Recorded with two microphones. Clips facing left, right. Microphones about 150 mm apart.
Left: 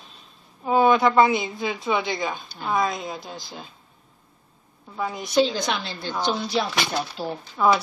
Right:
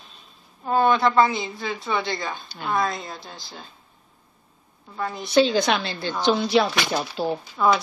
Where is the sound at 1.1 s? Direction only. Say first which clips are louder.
Left 1 dB; 15° left (ahead or behind).